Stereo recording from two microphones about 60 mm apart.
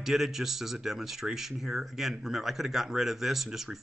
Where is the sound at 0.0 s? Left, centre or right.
Centre.